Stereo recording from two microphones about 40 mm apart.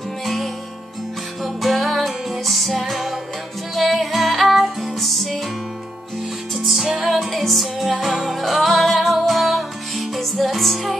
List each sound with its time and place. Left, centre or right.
0.2 s music: centre
6.5 s music: centre
8.1 s music: centre
8.4 s music: centre